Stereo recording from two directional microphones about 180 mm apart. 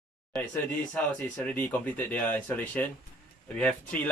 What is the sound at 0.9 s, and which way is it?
Speech, 10° left (ahead or behind).